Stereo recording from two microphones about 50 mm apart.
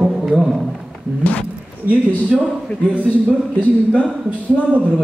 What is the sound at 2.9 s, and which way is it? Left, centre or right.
Speech, right.